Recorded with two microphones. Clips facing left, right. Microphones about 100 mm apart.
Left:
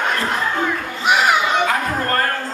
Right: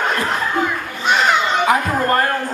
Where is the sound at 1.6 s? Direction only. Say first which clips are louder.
Right 3 dB; 15° right (ahead or behind).